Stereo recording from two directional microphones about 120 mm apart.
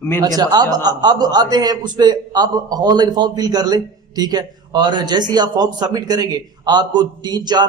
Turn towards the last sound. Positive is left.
turn(degrees=-35)  # may be behind; listen again after turning